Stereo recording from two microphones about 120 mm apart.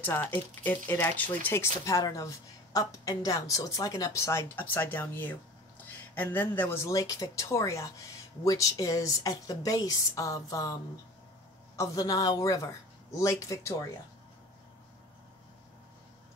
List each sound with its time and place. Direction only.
0.0 s speech: 20° left (ahead or behind)
11.7 s speech: 25° left (ahead or behind)